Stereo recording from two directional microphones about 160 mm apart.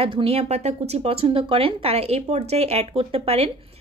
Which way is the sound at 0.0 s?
35° right (ahead or behind).